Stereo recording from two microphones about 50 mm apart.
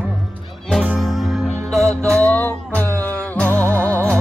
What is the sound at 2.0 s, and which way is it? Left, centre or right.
Music, left.